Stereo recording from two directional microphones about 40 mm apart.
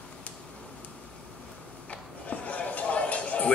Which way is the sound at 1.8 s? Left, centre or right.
Left.